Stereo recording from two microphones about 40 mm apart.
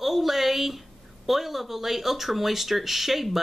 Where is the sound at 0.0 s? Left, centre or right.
Centre.